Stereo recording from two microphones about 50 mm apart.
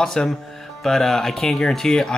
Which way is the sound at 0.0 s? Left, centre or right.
Centre.